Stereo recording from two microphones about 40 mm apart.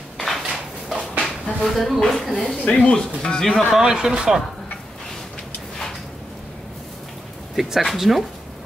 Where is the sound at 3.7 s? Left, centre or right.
Centre.